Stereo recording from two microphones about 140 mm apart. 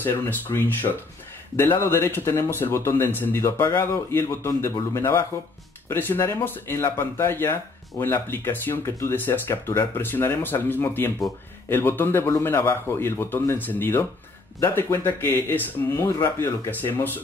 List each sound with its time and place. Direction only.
0.0 s speech: 15° left (ahead or behind)